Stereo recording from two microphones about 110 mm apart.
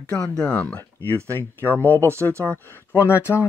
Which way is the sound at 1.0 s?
25° right (ahead or behind).